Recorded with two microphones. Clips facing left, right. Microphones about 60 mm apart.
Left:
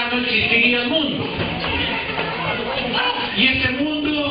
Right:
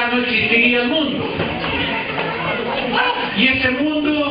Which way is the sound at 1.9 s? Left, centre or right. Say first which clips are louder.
Right 2 dB; centre.